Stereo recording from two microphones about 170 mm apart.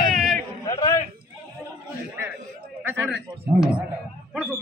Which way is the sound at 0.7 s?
25° left (ahead or behind).